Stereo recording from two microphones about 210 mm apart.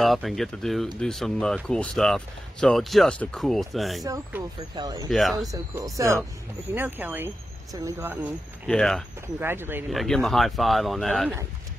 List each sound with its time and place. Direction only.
0.0 s speech: centre (ahead or behind)
4.0 s speech: 15° right (ahead or behind)
5.1 s speech: centre (ahead or behind)
5.5 s speech: 15° right (ahead or behind)
8.6 s speech: centre (ahead or behind)
9.4 s speech: 10° right (ahead or behind)